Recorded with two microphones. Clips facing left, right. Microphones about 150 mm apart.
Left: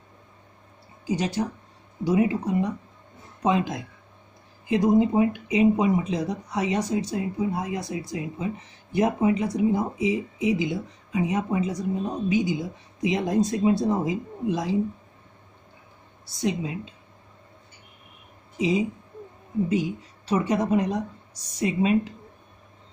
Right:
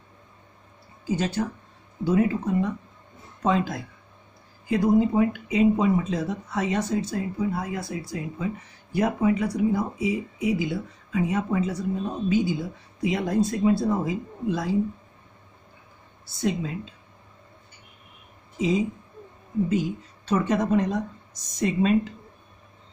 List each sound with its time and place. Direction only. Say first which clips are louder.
1.0 s speech: even; 15° left (ahead or behind)
16.3 s speech: even; 15° left (ahead or behind)
18.6 s speech: even; 15° left (ahead or behind)